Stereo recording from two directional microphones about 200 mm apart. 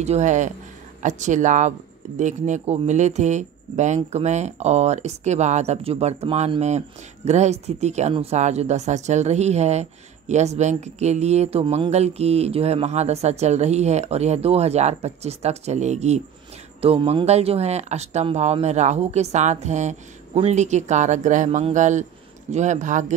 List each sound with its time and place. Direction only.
0.0 s speech: 35° right (ahead or behind)